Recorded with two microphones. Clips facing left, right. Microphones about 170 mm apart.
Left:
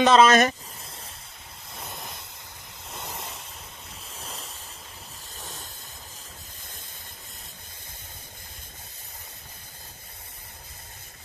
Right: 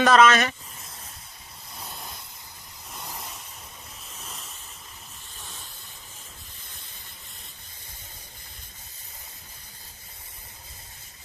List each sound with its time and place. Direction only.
0.0 s speech: 25° left (ahead or behind)
0.3 s a sound: 40° left (ahead or behind)
4.1 s ocean: 30° left (ahead or behind)